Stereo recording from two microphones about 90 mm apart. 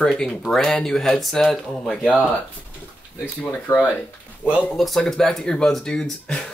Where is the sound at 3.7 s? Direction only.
30° left (ahead or behind).